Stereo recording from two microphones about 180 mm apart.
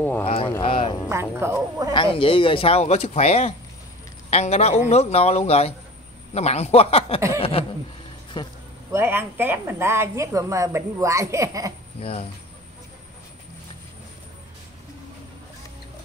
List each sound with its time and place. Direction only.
0.2 s a sound: 30° left (ahead or behind)
1.0 s speech: 15° right (ahead or behind)
2.0 s speech: 30° left (ahead or behind)
7.3 s chuckle: 30° left (ahead or behind)
8.3 s a sound: 25° left (ahead or behind)
8.9 s a woman's voice: 10° right (ahead or behind)
12.0 s speech: 30° left (ahead or behind)